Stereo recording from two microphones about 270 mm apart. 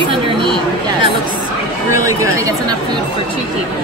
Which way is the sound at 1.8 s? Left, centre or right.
Centre.